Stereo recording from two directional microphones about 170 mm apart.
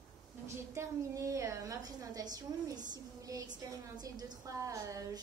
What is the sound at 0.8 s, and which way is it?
A woman's voice, 15° right (ahead or behind).